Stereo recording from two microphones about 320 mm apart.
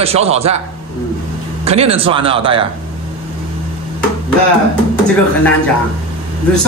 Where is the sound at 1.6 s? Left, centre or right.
Centre.